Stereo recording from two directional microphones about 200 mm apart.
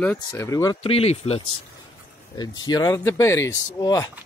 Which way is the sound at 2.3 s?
20° left (ahead or behind).